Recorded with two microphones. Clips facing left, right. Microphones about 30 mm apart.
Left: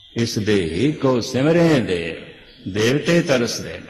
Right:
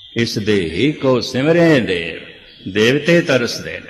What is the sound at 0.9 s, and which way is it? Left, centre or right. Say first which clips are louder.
Speech: right 4 dB; right.